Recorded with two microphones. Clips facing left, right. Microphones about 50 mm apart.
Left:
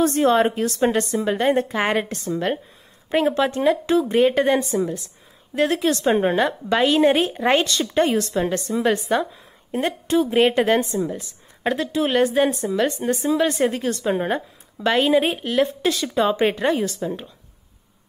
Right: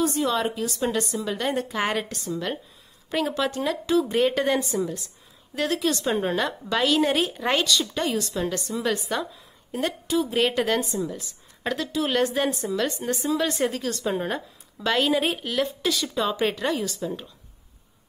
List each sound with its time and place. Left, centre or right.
0.0 s a woman's voice: left
4.0 s a woman's voice: centre; by 10.4 s left
10.4 s a woman's voice: left
17.0 s a woman's voice: centre